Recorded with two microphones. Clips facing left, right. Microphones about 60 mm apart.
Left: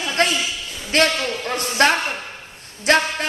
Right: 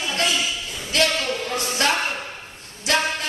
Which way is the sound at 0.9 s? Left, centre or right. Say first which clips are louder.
Left 4 dB; left.